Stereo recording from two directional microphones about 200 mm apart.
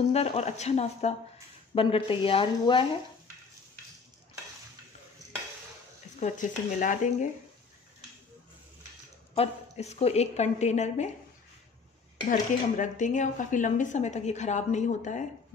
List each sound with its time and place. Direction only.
0.1 s speech: 30° left (ahead or behind)
6.1 s speech: 40° left (ahead or behind)
9.3 s speech: 30° left (ahead or behind)
12.3 s speech: 40° left (ahead or behind)